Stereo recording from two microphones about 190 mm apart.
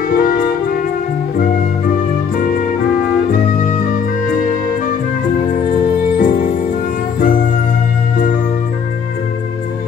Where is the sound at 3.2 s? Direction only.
45° left (ahead or behind).